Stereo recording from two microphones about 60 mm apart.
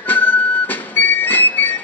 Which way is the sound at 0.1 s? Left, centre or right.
Left.